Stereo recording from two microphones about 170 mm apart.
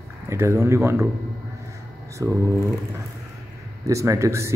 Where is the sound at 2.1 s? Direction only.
20° right (ahead or behind).